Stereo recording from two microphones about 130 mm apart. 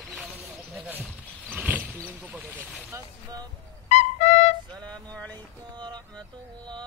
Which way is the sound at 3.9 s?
60° left (ahead or behind).